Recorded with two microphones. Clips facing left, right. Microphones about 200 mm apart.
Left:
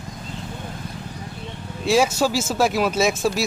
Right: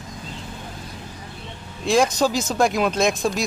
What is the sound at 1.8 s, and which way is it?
Speech, 5° left (ahead or behind).